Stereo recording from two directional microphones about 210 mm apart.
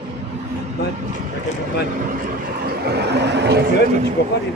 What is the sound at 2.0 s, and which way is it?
Vehicle, 40° right (ahead or behind).